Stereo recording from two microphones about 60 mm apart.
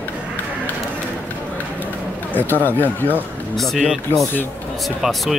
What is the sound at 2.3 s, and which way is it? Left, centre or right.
Speech, left.